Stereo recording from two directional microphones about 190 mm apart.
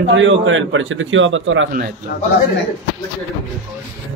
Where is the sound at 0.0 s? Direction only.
80° right.